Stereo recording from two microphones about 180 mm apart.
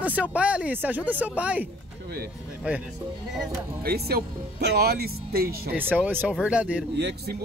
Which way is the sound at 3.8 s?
60° right (ahead or behind).